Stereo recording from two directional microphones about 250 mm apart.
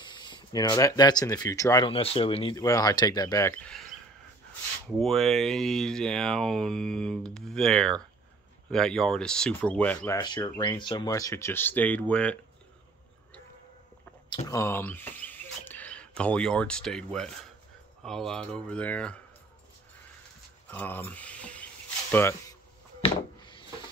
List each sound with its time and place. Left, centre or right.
0.0 s speech: centre
4.8 s speech: centre
14.3 s speech: centre
20.6 s speech: centre
23.0 s a sound: centre